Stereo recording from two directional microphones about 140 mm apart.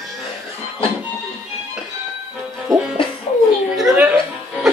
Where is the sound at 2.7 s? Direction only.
30° right (ahead or behind).